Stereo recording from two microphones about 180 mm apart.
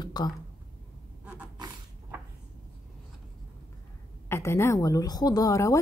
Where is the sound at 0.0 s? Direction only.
25° left (ahead or behind).